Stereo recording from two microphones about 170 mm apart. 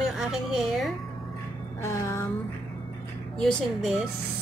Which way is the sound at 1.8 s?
15° left (ahead or behind).